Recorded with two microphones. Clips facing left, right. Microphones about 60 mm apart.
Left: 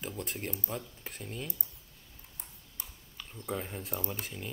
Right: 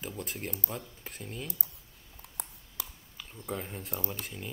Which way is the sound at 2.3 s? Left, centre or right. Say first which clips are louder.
Right 8 dB; right.